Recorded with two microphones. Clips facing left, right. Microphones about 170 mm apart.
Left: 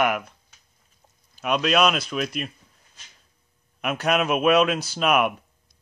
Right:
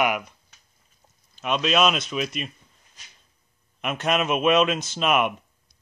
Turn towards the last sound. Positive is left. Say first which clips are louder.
# left 1 dB
turn(degrees=0)  # may be behind; listen again after turning